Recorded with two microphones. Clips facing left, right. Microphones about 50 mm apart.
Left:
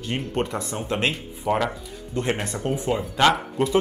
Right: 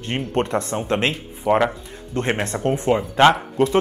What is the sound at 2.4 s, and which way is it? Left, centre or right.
Speech, right.